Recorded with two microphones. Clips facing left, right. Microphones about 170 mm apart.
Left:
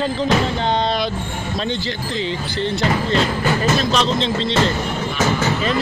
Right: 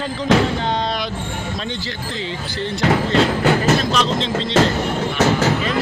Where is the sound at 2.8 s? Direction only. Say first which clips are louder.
Right 4 dB; 80° right.